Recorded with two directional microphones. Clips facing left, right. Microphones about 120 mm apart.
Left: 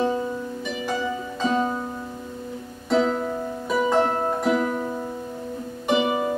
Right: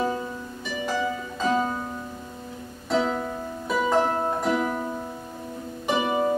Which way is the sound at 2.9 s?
Centre (ahead or behind).